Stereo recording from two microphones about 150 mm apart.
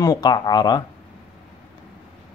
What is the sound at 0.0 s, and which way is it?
Speech, 25° left (ahead or behind).